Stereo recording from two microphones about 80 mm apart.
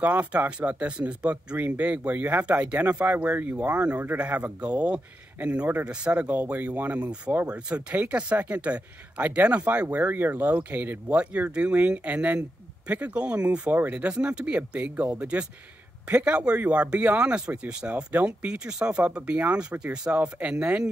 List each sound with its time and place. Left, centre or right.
0.0 s speech: centre